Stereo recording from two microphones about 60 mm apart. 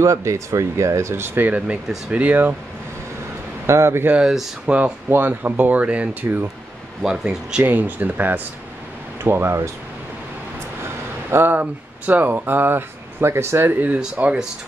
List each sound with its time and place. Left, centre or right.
0.0 s speech: right
3.6 s speech: right
4.6 s speech: right
5.1 s speech: right
6.2 s speech: right
7.0 s speech: centre
7.6 s speech: right
9.2 s speech: right
11.2 s speech: right
13.9 s speech: centre